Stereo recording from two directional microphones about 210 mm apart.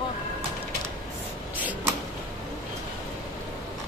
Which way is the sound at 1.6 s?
10° right (ahead or behind).